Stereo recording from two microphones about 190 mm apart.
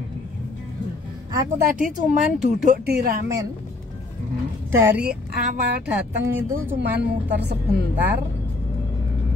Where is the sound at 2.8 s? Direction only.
55° right (ahead or behind).